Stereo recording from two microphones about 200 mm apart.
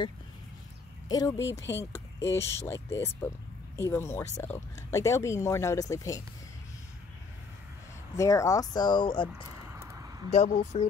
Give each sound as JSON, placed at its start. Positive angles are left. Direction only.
{"t": 1.0, "sound": "speech", "side_deg": 20}
{"t": 8.2, "sound": "speech", "side_deg": 15}
{"t": 9.8, "sound": "a sound", "side_deg": -15}
{"t": 10.3, "sound": "speech", "side_deg": 35}